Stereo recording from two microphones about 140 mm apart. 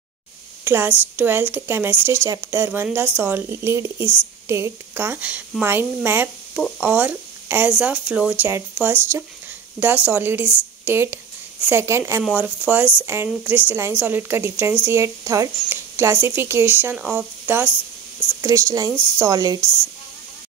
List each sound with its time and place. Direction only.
0.7 s speech: 15° right (ahead or behind)